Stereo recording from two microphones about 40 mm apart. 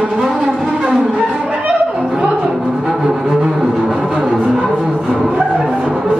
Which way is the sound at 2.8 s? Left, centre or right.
Centre.